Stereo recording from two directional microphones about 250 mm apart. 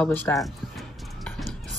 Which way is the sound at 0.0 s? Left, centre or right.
Centre.